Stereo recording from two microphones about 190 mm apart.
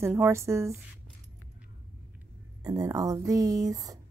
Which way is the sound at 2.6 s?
20° right (ahead or behind).